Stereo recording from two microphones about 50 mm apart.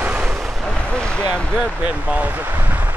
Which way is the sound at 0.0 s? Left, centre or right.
Right.